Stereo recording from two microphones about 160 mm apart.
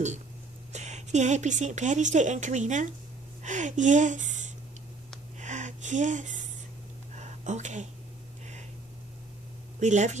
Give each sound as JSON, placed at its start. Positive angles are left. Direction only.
{"t": 0.7, "sound": "speech", "side_deg": -45}
{"t": 5.4, "sound": "music", "side_deg": -50}
{"t": 7.2, "sound": "a sound", "side_deg": -45}
{"t": 9.8, "sound": "speech", "side_deg": -45}